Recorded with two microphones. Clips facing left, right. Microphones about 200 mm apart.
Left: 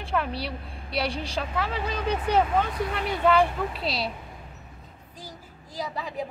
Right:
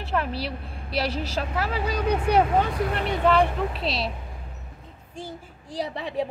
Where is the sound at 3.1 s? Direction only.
Centre (ahead or behind).